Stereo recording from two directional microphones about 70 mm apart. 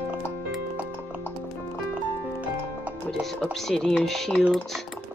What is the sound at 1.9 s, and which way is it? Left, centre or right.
Music, centre.